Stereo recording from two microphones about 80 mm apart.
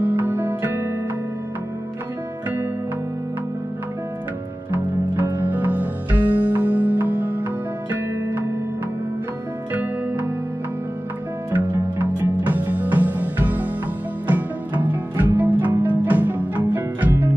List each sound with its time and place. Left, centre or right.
0.0 s music: right
5.1 s music: right
9.8 s music: right
11.5 s music: right